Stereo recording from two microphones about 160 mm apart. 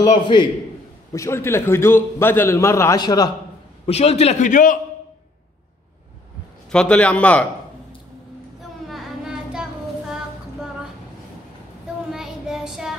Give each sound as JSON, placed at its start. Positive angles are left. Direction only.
{"t": 0.0, "sound": "a man's voice", "side_deg": 30}
{"t": 1.1, "sound": "a man's voice", "side_deg": 15}
{"t": 3.8, "sound": "a man's voice", "side_deg": 40}
{"t": 6.7, "sound": "a man's voice", "side_deg": 5}
{"t": 8.8, "sound": "child singing", "side_deg": 0}
{"t": 12.1, "sound": "child singing", "side_deg": -5}